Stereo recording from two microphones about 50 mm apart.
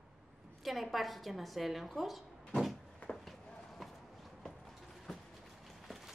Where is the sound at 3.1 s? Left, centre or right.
Centre.